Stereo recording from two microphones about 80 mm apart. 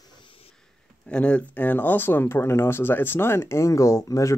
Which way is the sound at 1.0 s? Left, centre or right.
Centre.